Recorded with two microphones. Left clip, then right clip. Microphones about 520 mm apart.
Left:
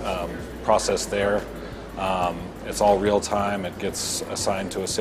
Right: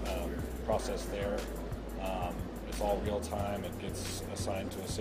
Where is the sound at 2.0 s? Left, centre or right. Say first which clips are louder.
Left 14 dB; left.